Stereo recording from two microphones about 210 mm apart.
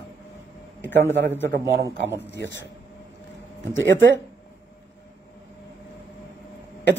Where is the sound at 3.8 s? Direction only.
60° right (ahead or behind).